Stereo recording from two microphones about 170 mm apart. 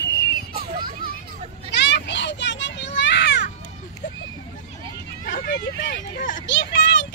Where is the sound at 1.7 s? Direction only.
90° left.